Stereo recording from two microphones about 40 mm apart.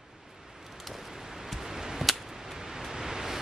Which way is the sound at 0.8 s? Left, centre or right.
Centre.